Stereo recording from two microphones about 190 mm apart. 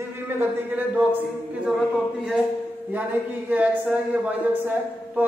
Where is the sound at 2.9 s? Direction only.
10° right (ahead or behind).